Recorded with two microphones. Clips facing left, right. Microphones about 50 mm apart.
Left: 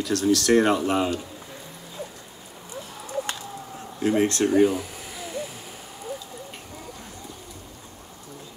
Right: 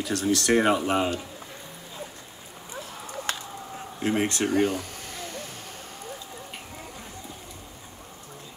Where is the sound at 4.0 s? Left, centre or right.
Right.